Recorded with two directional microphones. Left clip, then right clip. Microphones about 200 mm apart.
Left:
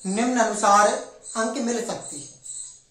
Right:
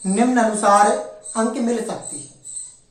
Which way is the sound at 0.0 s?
10° right (ahead or behind).